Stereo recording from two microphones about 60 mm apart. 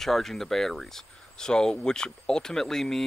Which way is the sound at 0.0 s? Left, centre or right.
Centre.